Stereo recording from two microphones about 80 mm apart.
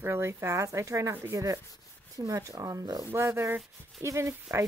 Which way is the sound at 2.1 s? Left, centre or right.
Right.